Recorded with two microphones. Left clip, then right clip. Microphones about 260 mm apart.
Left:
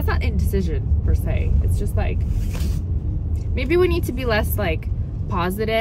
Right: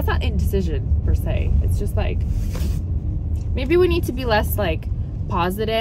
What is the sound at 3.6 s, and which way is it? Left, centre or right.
Speech, right.